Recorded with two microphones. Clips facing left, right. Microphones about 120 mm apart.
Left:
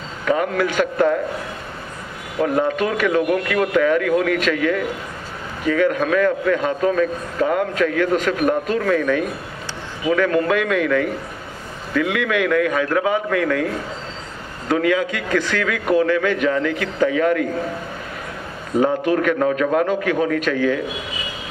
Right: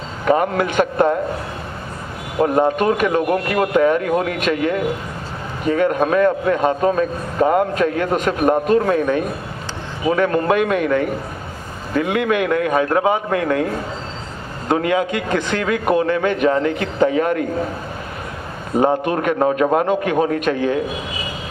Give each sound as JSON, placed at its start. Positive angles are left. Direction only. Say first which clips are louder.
{"t": 0.2, "sound": "a man's voice", "louder": "right 2 dB", "side_deg": -30}
{"t": 2.3, "sound": "a man's voice", "louder": "right 3 dB", "side_deg": -30}
{"t": 14.7, "sound": "a man's voice", "louder": "right 1 dB", "side_deg": -25}
{"t": 18.8, "sound": "a man's voice", "louder": "right 1 dB", "side_deg": -40}